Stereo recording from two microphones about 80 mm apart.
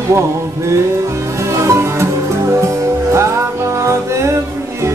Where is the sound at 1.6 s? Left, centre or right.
Right.